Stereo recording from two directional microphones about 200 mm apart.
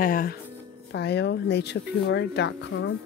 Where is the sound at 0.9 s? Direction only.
60° left (ahead or behind).